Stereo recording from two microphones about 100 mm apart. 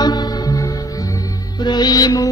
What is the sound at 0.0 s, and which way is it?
Music, 40° left (ahead or behind).